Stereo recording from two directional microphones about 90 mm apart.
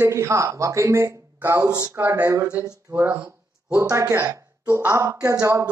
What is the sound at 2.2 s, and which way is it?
Speech, 35° right (ahead or behind).